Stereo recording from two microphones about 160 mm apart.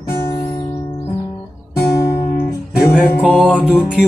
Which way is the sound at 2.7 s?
Centre (ahead or behind).